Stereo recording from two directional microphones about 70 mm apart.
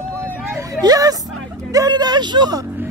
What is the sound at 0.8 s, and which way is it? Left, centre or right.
Speech, right.